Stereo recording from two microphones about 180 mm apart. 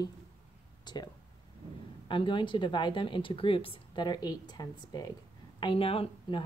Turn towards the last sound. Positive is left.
turn(degrees=30)  # may be behind; listen again after turning